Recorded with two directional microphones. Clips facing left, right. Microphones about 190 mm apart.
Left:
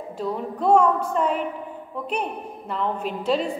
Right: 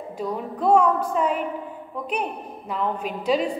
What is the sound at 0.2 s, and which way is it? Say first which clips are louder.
A woman's voice: even; 5° right (ahead or behind).